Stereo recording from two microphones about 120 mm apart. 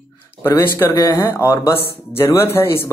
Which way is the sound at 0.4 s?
20° left (ahead or behind).